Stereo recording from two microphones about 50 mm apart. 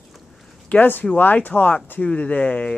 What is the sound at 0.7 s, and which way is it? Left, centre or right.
Speech, left.